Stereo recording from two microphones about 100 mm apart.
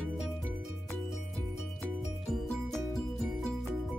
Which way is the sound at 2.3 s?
5° left (ahead or behind).